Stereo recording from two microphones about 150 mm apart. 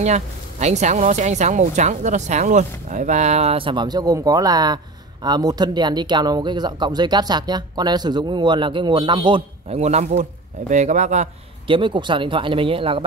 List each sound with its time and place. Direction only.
0.0 s speech: 50° right (ahead or behind)
11.6 s speech: 35° right (ahead or behind)